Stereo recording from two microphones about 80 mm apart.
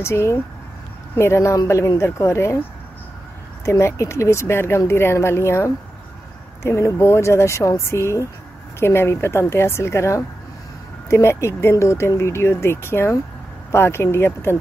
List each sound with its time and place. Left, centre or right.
0.0 s speech: left
3.6 s speech: left